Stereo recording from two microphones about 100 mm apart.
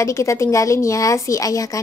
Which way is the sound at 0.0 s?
30° left (ahead or behind).